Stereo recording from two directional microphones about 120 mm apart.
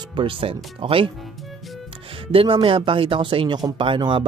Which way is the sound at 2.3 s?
45° right (ahead or behind).